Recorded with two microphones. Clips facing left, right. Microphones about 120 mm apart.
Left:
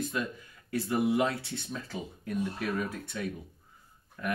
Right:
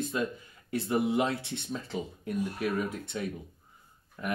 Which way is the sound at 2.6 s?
25° right (ahead or behind).